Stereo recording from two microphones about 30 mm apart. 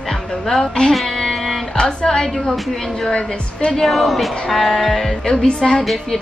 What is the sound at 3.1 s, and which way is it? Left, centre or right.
Speech, left.